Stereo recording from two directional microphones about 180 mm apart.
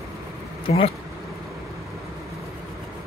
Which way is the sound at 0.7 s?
35° left (ahead or behind).